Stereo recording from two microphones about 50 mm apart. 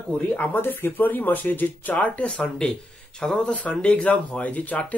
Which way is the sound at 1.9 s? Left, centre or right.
Left.